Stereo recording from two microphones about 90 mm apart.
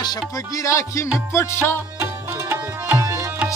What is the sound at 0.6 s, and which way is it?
Music, 35° left (ahead or behind).